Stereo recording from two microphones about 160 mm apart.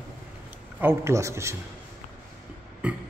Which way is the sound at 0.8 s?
15° right (ahead or behind).